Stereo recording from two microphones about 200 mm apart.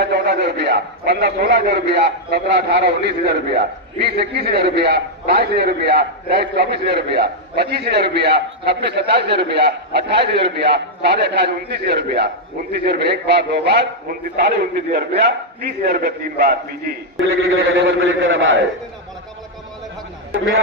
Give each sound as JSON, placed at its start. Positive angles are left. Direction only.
{"t": 0.0, "sound": "a man's voice", "side_deg": -55}
{"t": 17.6, "sound": "a man's voice", "side_deg": -75}